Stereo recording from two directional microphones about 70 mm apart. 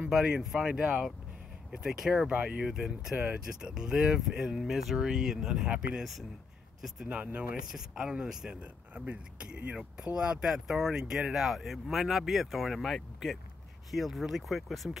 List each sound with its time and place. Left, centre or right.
0.1 s speech: centre
2.2 s speech: centre
7.1 s speech: centre